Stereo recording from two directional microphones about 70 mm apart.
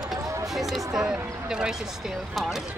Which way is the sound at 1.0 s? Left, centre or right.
Centre.